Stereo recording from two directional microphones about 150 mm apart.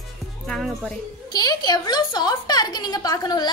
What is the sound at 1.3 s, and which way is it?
A woman's voice, 25° left (ahead or behind).